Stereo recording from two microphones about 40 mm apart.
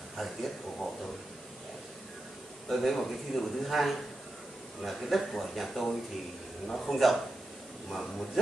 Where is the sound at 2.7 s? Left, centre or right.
Centre.